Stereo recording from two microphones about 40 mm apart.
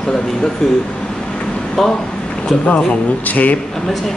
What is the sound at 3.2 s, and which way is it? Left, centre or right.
Speech, left.